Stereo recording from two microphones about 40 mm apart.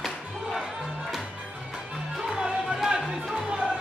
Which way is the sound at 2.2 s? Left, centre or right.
Centre.